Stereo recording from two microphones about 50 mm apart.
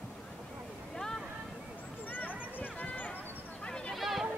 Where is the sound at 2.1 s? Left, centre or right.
Left.